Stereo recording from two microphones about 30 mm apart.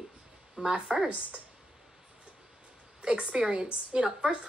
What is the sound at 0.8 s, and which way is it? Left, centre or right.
Speech, right.